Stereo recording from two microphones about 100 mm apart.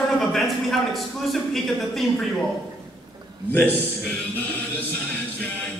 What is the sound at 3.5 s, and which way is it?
Speech, 20° left (ahead or behind).